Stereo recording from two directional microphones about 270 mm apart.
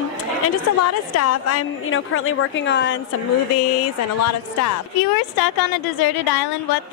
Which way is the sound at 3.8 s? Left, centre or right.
Left.